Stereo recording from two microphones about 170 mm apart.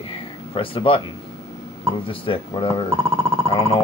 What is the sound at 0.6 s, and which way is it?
Speech, 30° left (ahead or behind).